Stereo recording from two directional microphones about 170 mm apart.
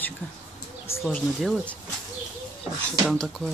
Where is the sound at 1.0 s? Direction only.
Centre (ahead or behind).